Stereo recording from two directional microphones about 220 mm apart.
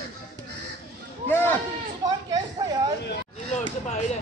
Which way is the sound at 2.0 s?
15° right (ahead or behind).